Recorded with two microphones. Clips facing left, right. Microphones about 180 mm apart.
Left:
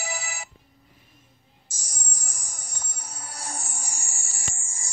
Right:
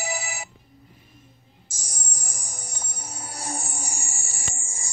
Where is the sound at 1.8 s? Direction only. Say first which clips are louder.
Right 3 dB; 10° right (ahead or behind).